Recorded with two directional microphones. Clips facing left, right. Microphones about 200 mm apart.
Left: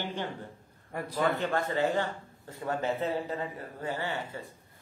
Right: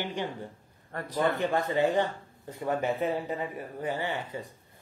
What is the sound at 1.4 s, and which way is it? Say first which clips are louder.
Speech: right 3 dB; 15° right (ahead or behind).